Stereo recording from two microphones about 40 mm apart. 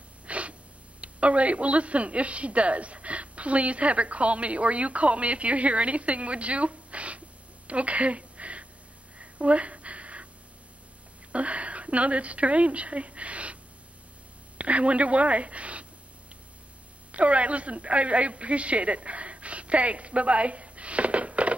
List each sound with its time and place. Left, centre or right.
0.3 s a sound: right
1.0 s a woman's voice: right
9.2 s a sound: right
11.3 s a woman's voice: right
14.6 s a woman's voice: right
17.1 s a woman's voice: right